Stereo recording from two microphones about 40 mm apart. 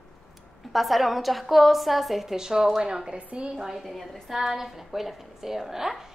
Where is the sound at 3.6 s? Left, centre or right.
Centre.